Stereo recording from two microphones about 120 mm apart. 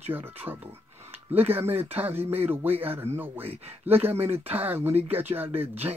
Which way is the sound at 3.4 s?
60° right (ahead or behind).